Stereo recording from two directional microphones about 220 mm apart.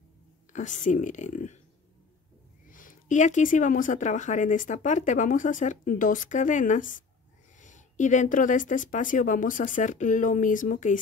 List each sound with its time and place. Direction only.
0.5 s speech: 35° left (ahead or behind)
2.7 s speech: 35° left (ahead or behind)